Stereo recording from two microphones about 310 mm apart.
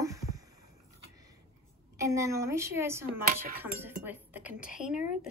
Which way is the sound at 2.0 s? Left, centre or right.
Centre.